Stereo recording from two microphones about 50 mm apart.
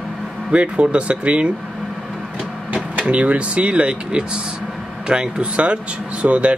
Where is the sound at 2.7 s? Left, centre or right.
Right.